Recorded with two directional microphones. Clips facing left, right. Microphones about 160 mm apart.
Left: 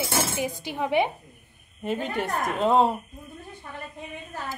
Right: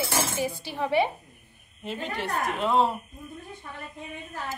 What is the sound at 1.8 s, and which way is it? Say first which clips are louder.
Speech: left 4 dB; 50° left (ahead or behind).